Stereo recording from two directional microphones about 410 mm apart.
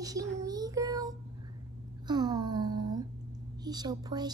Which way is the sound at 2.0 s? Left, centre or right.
Centre.